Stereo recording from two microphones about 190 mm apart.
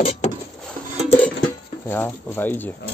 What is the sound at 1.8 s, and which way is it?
Speech, 10° left (ahead or behind).